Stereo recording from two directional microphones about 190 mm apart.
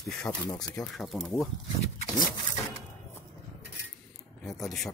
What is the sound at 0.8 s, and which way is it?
Speech, centre (ahead or behind).